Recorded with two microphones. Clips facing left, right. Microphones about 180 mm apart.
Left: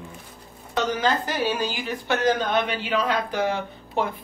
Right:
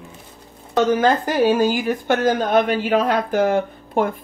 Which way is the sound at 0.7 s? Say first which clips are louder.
Right 7 dB; 50° right (ahead or behind).